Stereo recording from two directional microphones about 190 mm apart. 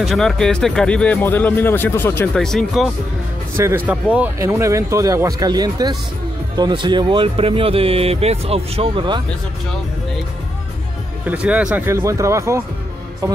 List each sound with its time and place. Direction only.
0.0 s speech: centre (ahead or behind)
3.5 s speech: 10° right (ahead or behind)
11.2 s speech: 5° right (ahead or behind)